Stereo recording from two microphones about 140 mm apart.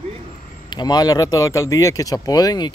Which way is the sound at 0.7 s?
30° left (ahead or behind).